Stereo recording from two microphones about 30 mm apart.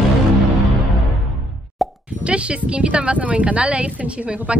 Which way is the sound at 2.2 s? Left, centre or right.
Right.